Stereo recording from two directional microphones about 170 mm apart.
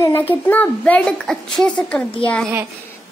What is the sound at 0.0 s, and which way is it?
A child's voice, 15° left (ahead or behind).